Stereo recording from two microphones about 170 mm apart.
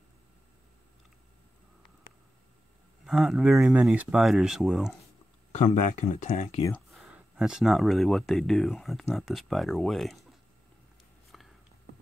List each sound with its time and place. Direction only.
3.1 s speech: 5° right (ahead or behind)
6.0 s speech: 45° left (ahead or behind)
6.9 s speech: centre (ahead or behind)
11.3 s a sound: centre (ahead or behind)